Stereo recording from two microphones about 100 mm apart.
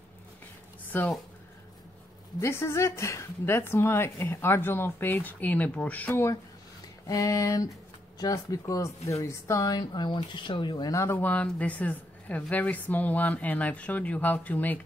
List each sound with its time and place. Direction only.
0.9 s speech: 20° left (ahead or behind)
2.4 s speech: 25° left (ahead or behind)
7.1 s speech: 35° left (ahead or behind); by 10.9 s 50° left (ahead or behind)
10.9 s speech: 30° left (ahead or behind)
11.1 s a woman's voice: 15° left (ahead or behind)